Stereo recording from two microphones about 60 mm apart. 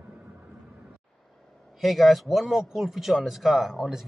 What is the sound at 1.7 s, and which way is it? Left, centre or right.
Speech, centre.